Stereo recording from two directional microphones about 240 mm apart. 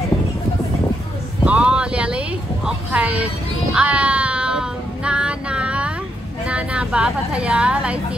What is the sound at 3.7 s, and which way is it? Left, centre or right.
Child singing, centre.